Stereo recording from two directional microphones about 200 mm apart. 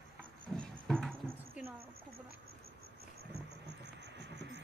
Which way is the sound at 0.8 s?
Centre (ahead or behind).